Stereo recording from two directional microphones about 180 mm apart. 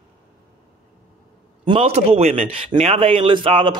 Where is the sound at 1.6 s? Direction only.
30° right (ahead or behind).